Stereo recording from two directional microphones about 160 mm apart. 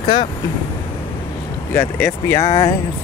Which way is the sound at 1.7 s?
15° left (ahead or behind).